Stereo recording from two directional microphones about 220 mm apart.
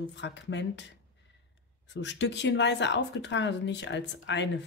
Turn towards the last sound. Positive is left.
turn(degrees=55)  # may be behind; listen again after turning